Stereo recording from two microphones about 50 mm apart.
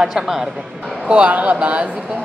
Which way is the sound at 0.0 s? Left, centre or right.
Centre.